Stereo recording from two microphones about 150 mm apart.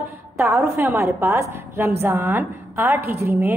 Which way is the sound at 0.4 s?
15° right (ahead or behind).